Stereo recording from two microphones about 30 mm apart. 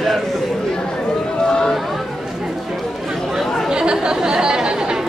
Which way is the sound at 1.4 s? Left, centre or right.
Left.